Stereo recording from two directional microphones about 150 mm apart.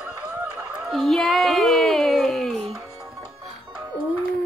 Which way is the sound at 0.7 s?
Centre (ahead or behind).